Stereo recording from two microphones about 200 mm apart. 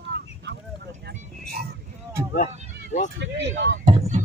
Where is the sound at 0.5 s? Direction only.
55° right (ahead or behind).